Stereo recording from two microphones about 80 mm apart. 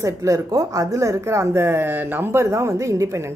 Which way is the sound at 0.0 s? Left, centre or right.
Right.